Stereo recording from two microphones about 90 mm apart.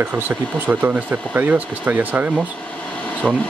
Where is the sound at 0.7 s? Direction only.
20° right (ahead or behind).